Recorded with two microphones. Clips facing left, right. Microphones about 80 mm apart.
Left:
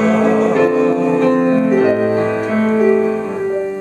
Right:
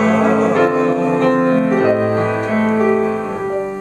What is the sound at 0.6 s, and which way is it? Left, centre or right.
Music, right.